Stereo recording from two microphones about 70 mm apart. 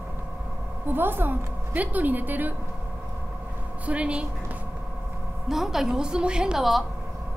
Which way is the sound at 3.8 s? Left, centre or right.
Centre.